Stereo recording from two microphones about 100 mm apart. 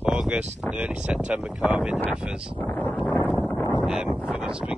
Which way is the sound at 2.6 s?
20° left (ahead or behind).